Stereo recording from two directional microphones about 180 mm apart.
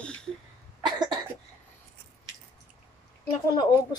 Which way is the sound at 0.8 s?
25° right (ahead or behind).